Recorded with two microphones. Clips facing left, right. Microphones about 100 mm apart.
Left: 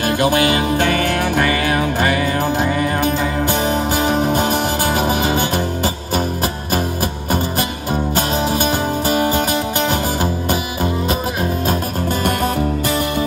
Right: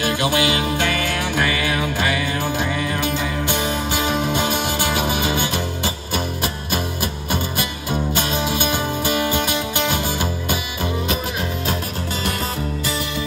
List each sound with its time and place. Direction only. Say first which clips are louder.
0.0 s music: left 4 dB; 45° left (ahead or behind)